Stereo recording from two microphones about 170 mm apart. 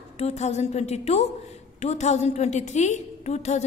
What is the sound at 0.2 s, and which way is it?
A woman's voice, 40° left (ahead or behind).